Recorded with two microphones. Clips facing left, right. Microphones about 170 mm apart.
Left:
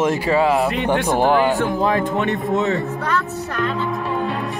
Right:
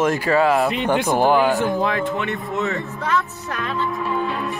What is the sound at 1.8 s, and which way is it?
Speech, 40° left (ahead or behind).